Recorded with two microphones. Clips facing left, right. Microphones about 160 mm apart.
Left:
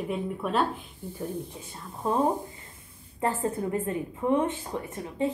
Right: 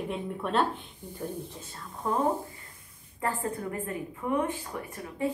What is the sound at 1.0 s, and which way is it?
Speech, 15° right (ahead or behind).